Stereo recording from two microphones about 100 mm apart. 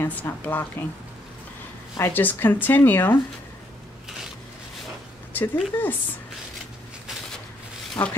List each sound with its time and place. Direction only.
0.0 s speech: 15° left (ahead or behind)
2.0 s speech: 25° left (ahead or behind)
5.3 s speech: 20° left (ahead or behind)
8.0 s speech: 25° left (ahead or behind)